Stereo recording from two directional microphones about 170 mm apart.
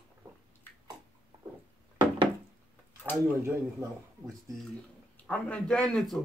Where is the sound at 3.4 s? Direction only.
15° right (ahead or behind).